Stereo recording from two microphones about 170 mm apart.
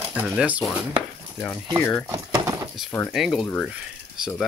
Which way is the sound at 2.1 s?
20° right (ahead or behind).